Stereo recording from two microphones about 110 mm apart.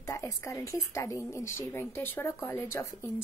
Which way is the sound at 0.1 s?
30° left (ahead or behind).